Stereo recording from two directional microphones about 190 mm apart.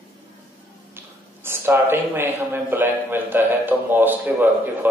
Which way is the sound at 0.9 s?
10° right (ahead or behind).